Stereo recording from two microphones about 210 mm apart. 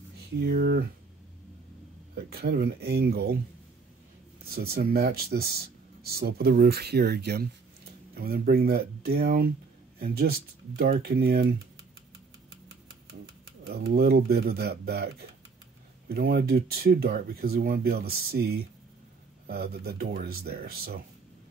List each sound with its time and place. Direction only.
0.2 s speech: 50° right (ahead or behind)
2.1 s speech: 50° right (ahead or behind)
4.5 s speech: 45° right (ahead or behind)
13.7 s speech: 45° right (ahead or behind)